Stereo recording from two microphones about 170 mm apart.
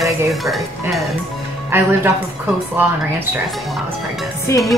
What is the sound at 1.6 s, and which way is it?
Speech, 15° right (ahead or behind).